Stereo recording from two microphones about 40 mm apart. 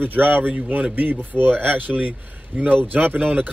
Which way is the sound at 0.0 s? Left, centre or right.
Right.